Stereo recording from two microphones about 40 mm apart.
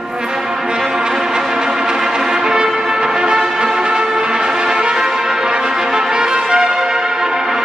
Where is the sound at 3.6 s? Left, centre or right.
Centre.